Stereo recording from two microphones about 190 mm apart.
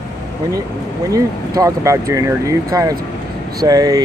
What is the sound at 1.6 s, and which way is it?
Speech, 15° right (ahead or behind).